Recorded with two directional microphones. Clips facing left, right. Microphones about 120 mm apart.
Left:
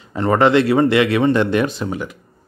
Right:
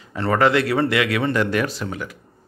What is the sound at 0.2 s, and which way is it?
Speech, 25° left (ahead or behind).